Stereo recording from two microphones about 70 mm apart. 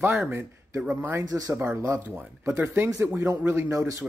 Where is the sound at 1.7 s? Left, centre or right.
Right.